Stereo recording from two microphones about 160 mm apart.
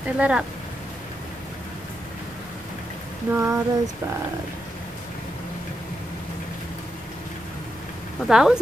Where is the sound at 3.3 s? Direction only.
15° right (ahead or behind).